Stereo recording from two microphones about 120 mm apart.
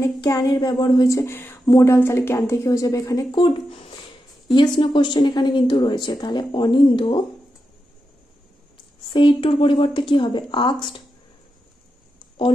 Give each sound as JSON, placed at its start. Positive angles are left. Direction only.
{"t": 0.0, "sound": "speech", "side_deg": 25}
{"t": 1.0, "sound": "speech", "side_deg": 25}
{"t": 9.1, "sound": "speech", "side_deg": 45}